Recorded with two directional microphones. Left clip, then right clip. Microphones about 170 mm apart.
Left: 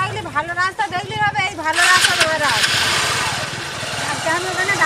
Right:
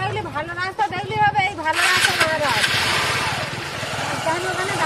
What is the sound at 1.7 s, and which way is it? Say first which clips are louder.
Vehicle: left 5 dB; 20° right (ahead or behind).